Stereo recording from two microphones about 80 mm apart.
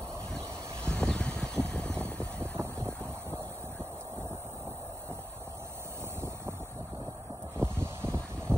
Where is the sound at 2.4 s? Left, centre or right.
Right.